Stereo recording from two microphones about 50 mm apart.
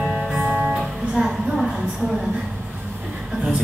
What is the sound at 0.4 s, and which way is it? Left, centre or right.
Music, centre.